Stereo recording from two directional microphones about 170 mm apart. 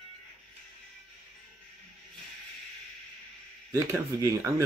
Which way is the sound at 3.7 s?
15° right (ahead or behind).